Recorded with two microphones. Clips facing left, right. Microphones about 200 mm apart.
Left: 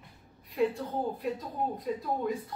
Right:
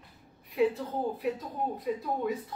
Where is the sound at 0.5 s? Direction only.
Centre (ahead or behind).